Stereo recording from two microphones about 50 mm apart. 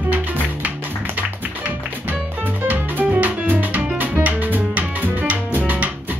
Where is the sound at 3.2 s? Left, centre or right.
Right.